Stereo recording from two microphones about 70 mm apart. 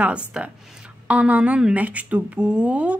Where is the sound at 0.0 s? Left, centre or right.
Centre.